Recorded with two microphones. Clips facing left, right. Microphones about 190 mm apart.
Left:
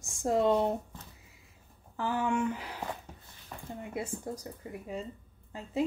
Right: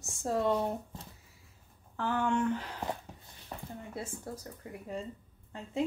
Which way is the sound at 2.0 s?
10° left (ahead or behind).